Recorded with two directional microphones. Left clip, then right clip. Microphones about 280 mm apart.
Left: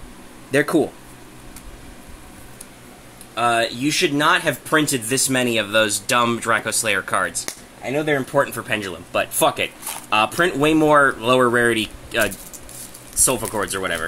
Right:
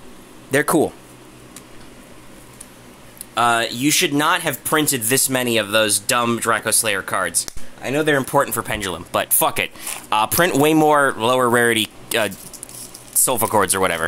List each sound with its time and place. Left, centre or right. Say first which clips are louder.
0.5 s speech: right 1 dB; right
3.3 s speech: right 2 dB; right
7.8 s speech: right 3 dB; right